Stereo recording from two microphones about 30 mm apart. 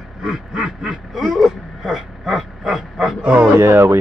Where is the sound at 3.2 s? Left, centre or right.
Right.